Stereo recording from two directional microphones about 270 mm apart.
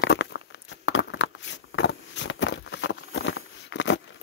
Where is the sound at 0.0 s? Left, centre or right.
Left.